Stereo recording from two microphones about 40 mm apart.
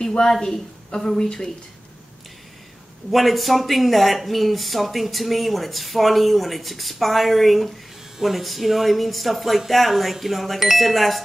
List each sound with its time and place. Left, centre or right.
0.0 s speech: centre
3.1 s speech: centre